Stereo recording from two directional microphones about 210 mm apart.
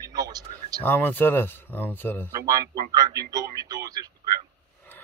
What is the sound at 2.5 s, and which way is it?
A man's voice, 15° right (ahead or behind).